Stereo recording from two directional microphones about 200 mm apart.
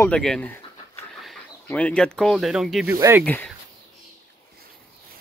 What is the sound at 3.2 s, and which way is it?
Speech, 10° left (ahead or behind).